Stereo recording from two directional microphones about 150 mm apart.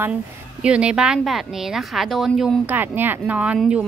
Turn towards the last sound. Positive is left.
turn(degrees=-5)  # may be behind; listen again after turning